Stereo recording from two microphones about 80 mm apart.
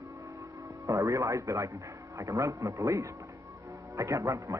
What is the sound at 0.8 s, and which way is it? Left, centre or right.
A man's voice, right.